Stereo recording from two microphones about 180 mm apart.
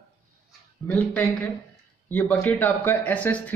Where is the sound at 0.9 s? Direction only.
10° left (ahead or behind).